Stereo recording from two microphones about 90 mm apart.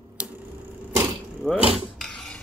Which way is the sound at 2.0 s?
5° left (ahead or behind).